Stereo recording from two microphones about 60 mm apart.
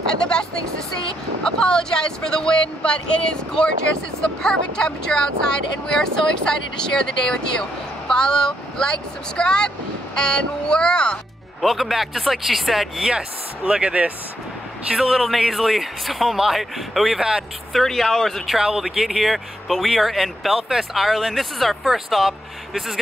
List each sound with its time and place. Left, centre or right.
0.2 s vehicle: centre
1.4 s speech: centre
11.6 s speech: centre
13.7 s speech: centre
14.9 s speech: centre
18.6 s speech: centre